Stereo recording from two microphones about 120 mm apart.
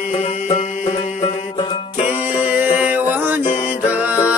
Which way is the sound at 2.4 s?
15° right (ahead or behind).